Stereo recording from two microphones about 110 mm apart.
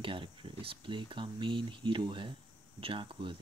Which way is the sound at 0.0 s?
50° right (ahead or behind).